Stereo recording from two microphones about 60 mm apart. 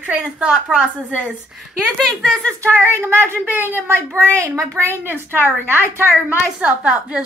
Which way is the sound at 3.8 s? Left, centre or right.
Right.